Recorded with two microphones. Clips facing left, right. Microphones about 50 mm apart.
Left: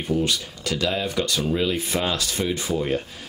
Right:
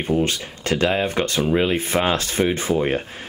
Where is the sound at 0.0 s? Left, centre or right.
Right.